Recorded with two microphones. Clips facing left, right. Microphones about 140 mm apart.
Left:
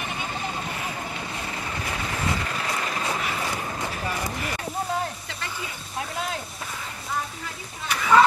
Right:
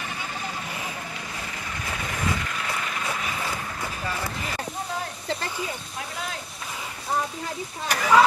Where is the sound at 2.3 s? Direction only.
35° left (ahead or behind).